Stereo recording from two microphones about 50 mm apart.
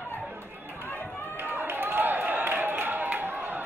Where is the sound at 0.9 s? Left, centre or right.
Left.